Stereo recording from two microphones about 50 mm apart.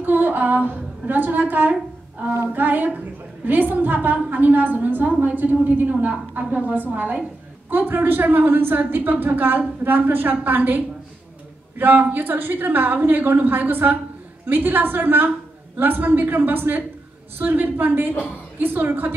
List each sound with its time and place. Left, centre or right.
0.0 s a woman's voice: right
11.8 s a woman's voice: right